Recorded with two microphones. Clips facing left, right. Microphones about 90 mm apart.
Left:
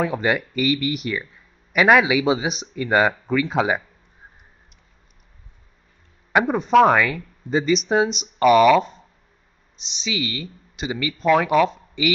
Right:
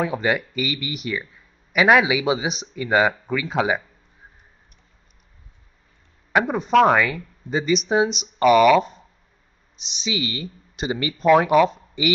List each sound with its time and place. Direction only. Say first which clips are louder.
0.0 s speech: left 1 dB; 5° right (ahead or behind)
6.3 s speech: left 2 dB; centre (ahead or behind)
10.1 s speech: left 1 dB; 20° right (ahead or behind)
11.1 s speech: right 2 dB; 15° right (ahead or behind)